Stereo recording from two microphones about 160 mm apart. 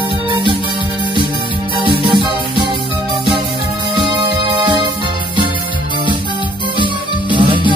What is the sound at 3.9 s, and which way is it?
Music, 30° right (ahead or behind).